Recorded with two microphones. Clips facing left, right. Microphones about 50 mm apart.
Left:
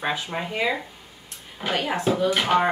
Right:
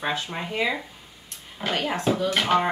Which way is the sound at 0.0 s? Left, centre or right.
Centre.